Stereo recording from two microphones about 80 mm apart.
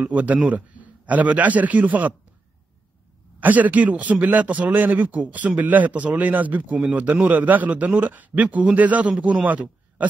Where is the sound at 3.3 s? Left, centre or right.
Right.